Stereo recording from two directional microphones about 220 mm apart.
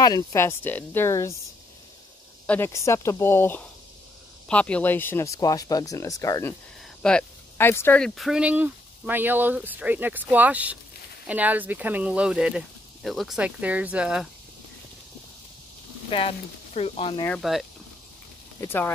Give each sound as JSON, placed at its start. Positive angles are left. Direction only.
{"t": 0.0, "sound": "speech", "side_deg": 15}
{"t": 2.4, "sound": "speech", "side_deg": 10}
{"t": 7.0, "sound": "speech", "side_deg": 5}
{"t": 16.1, "sound": "speech", "side_deg": 25}
{"t": 17.2, "sound": "speech", "side_deg": 0}
{"t": 18.6, "sound": "speech", "side_deg": 10}